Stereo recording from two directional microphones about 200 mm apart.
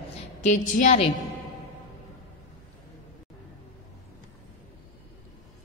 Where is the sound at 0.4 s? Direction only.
35° left (ahead or behind).